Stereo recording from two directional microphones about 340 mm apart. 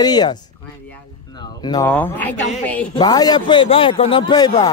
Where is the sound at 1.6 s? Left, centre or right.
Centre.